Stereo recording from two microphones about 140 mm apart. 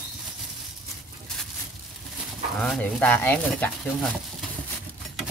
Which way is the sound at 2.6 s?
10° left (ahead or behind).